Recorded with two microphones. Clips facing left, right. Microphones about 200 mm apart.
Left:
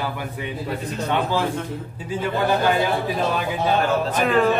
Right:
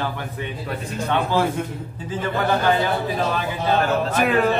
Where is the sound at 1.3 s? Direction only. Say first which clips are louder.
Right 2 dB; 10° right (ahead or behind).